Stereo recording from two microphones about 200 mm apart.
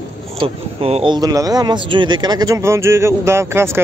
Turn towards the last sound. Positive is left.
turn(degrees=-10)  # may be behind; listen again after turning